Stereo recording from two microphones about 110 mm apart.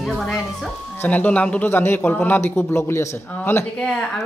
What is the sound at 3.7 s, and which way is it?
Speech, 5° left (ahead or behind).